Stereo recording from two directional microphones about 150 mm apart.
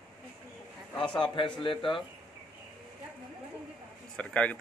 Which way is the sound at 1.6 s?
35° left (ahead or behind).